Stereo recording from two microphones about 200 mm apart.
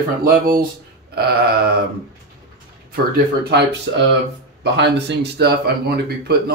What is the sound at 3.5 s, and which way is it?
Speech, 60° right (ahead or behind).